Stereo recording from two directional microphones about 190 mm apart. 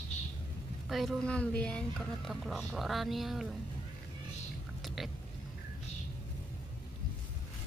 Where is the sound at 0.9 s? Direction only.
Centre (ahead or behind).